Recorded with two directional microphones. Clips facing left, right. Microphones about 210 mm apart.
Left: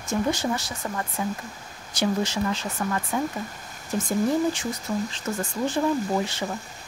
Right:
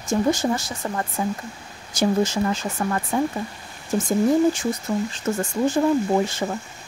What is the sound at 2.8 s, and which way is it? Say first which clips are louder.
Speech: right 4 dB; 35° right (ahead or behind).